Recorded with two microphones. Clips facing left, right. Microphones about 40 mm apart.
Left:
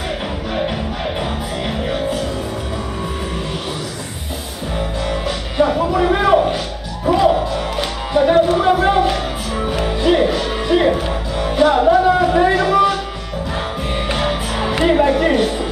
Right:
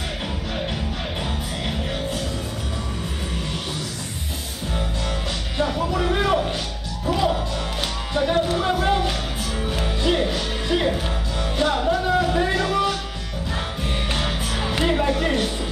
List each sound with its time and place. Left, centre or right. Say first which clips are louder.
1.7 s music: left 8 dB; centre
5.6 s music: left 8 dB; centre
14.1 s music: left 6 dB; centre